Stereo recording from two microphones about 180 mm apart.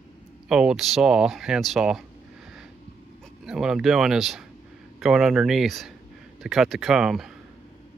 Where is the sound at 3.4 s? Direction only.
5° right (ahead or behind).